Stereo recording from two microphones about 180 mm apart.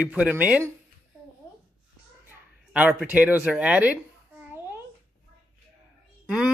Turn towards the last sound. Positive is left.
turn(degrees=-5)  # may be behind; listen again after turning